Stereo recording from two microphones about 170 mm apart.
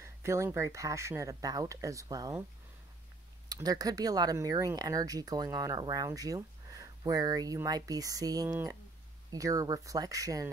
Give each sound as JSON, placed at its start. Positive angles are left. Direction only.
{"t": 0.0, "sound": "speech", "side_deg": -15}
{"t": 3.4, "sound": "speech", "side_deg": -20}